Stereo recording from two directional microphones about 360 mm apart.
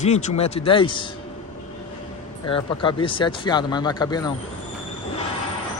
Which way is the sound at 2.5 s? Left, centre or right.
Centre.